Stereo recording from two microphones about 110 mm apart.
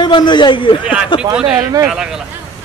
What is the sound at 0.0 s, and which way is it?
Speech, 40° left (ahead or behind).